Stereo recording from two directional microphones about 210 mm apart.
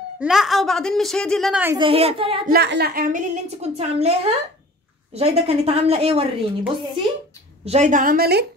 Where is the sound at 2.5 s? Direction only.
50° right (ahead or behind); by 6.3 s 30° right (ahead or behind).